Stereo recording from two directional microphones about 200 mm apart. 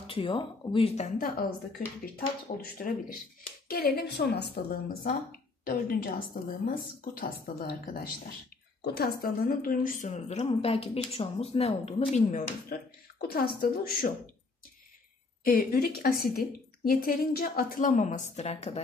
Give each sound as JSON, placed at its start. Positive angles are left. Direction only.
{"t": 0.0, "sound": "a woman's voice", "side_deg": 25}
{"t": 15.4, "sound": "a woman's voice", "side_deg": 45}